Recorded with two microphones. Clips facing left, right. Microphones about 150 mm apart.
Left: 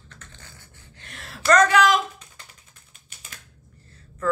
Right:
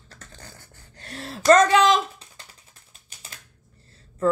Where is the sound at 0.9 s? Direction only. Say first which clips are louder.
Right 7 dB; 35° right (ahead or behind).